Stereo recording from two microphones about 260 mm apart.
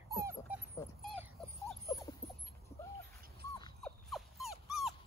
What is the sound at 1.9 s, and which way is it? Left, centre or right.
Dog, centre.